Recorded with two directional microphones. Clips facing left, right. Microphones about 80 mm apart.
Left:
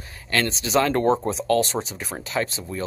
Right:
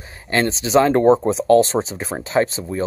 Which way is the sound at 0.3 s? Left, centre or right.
Right.